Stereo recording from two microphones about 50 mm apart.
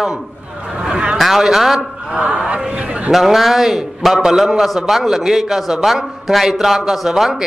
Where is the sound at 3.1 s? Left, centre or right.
Centre.